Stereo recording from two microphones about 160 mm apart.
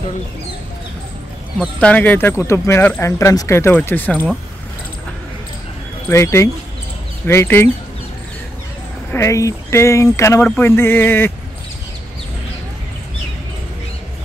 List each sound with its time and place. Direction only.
1.8 s speech: 10° left (ahead or behind)
6.0 s speech: 15° left (ahead or behind)
9.1 s speech: 20° left (ahead or behind)